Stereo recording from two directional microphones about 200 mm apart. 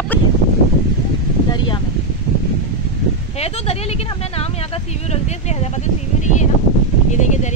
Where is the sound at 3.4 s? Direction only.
30° left (ahead or behind).